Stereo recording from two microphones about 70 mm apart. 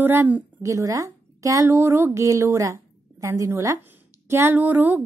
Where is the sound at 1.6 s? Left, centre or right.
Right.